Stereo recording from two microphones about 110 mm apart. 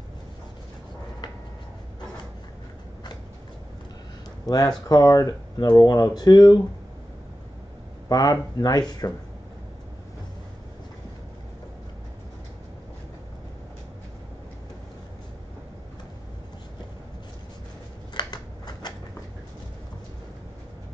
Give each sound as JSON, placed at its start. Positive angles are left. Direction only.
{"t": 4.5, "sound": "speech", "side_deg": 35}
{"t": 8.1, "sound": "speech", "side_deg": 35}
{"t": 18.1, "sound": "scissors", "side_deg": 40}